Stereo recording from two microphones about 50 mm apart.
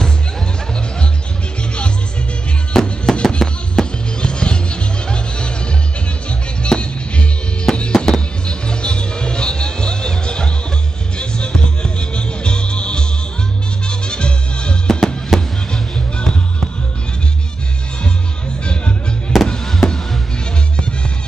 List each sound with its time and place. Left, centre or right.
2.7 s music: centre
6.6 s music: left
15.3 s fireworks: centre
15.7 s music: centre
19.4 s a sound: centre